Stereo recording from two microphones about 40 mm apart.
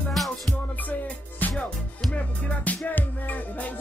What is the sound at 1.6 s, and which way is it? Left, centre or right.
Music, centre.